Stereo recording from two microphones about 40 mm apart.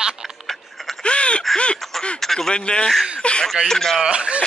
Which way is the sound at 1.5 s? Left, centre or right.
Left.